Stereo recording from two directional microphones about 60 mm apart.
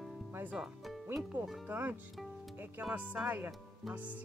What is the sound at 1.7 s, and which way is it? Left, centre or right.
Speech, right.